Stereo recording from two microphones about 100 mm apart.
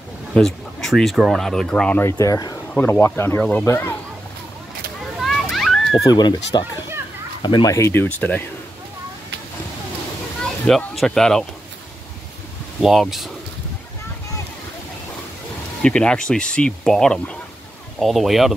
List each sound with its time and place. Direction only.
0.3 s speech: 5° left (ahead or behind)
2.1 s speech: 35° left (ahead or behind)
2.7 s speech: 20° left (ahead or behind)
5.2 s a sound: centre (ahead or behind)
6.0 s speech: 45° left (ahead or behind)
7.6 s speech: 30° left (ahead or behind)
10.4 s speech: 5° left (ahead or behind)
12.8 s speech: centre (ahead or behind)
15.8 s speech: 10° left (ahead or behind)